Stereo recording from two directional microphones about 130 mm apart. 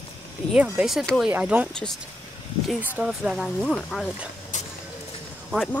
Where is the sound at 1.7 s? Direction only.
5° left (ahead or behind).